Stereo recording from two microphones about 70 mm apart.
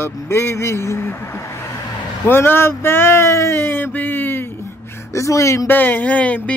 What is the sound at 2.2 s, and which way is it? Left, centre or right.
Speech, left.